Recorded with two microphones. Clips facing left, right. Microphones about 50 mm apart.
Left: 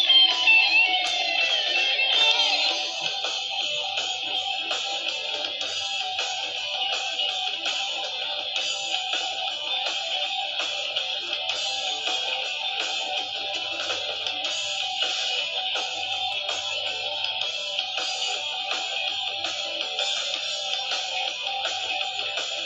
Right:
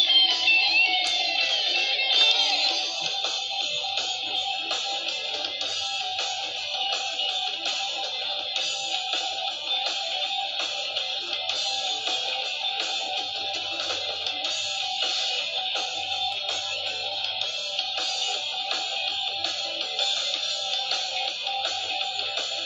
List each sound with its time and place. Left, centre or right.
0.0 s music: left